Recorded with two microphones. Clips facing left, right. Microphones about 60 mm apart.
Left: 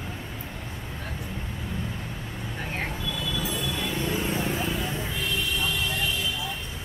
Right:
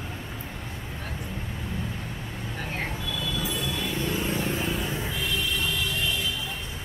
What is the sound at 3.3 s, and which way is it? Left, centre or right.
Train wheels squealing, centre.